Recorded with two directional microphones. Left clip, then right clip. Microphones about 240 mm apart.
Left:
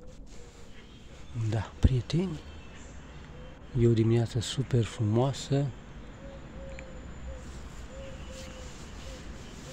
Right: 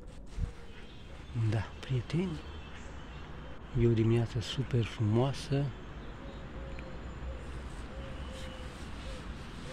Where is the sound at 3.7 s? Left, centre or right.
Centre.